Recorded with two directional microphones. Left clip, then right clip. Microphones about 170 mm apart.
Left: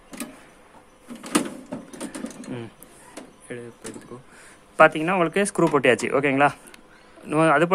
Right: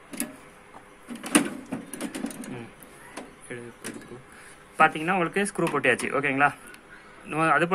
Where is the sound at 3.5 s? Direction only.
45° left (ahead or behind).